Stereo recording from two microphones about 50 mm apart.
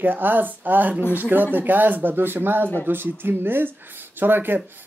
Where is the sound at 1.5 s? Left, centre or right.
Right.